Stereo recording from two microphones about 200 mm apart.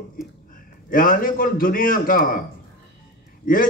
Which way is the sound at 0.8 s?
45° left (ahead or behind).